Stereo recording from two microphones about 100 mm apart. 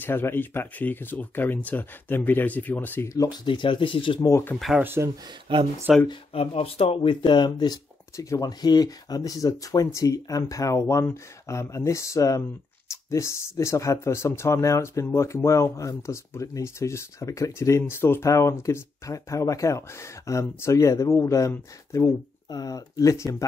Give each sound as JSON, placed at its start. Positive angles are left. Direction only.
{"t": 0.0, "sound": "speech", "side_deg": 20}
{"t": 3.4, "sound": "speech", "side_deg": 55}
{"t": 4.2, "sound": "speech", "side_deg": 35}
{"t": 4.7, "sound": "speech", "side_deg": -25}
{"t": 5.9, "sound": "speech", "side_deg": -5}
{"t": 6.3, "sound": "speech", "side_deg": 75}
{"t": 7.2, "sound": "speech", "side_deg": 50}